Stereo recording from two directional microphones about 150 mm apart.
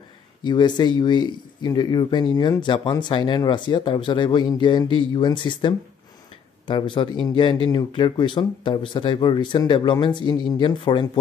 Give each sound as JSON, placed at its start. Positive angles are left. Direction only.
{"t": 0.4, "sound": "speech", "side_deg": 30}